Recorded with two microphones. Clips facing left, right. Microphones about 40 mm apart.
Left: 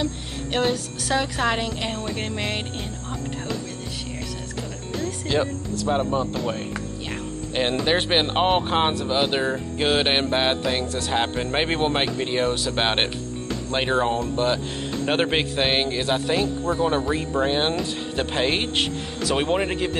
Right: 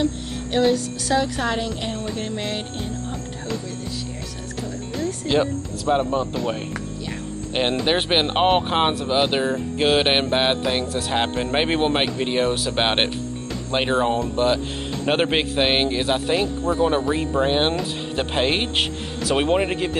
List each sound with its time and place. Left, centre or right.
1.1 s speech: left
2.1 s music: left
4.9 s speech: centre
7.8 s speech: centre
9.8 s music: centre
10.3 s speech: centre